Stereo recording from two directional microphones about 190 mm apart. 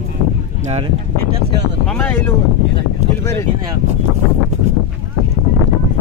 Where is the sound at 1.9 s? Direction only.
10° left (ahead or behind).